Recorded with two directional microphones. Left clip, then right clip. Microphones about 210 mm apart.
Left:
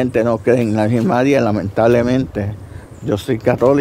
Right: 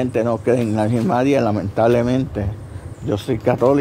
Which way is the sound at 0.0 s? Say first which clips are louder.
Left 3 dB; 20° left (ahead or behind).